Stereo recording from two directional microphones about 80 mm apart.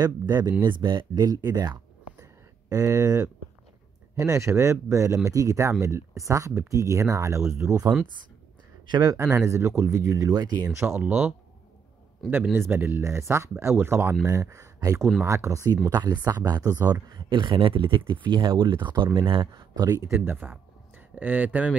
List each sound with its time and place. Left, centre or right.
0.0 s speech: right
0.7 s speech: right
2.7 s speech: right
7.9 s speech: centre
8.8 s speech: right
9.1 s speech: right
10.9 s speech: right
12.5 s speech: right
14.2 s speech: right
15.9 s speech: right
19.8 s speech: right
20.2 s speech: right